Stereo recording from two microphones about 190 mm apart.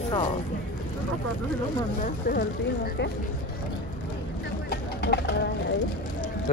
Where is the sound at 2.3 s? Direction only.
55° left (ahead or behind).